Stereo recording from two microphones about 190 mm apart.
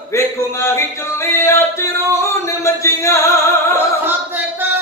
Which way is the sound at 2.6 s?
15° left (ahead or behind).